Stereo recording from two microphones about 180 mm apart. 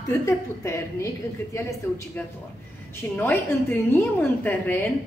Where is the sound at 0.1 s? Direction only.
15° left (ahead or behind).